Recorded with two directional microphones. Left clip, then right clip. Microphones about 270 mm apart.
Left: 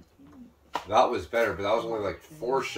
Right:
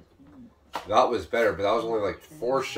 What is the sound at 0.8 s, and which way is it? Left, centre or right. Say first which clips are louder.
Speech: right 1 dB; centre.